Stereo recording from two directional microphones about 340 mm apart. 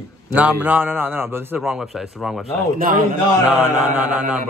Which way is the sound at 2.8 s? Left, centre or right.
Right.